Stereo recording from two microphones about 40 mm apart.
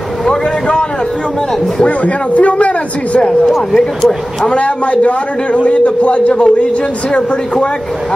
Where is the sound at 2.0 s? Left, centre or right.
Left.